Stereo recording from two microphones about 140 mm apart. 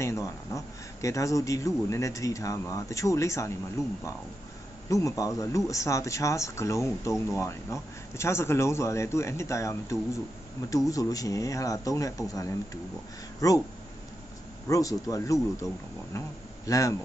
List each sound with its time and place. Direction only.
0.0 s speech: 20° left (ahead or behind)
14.7 s speech: 25° left (ahead or behind)